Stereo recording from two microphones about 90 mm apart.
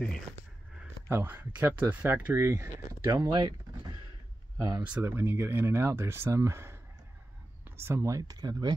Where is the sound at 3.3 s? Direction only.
55° right (ahead or behind).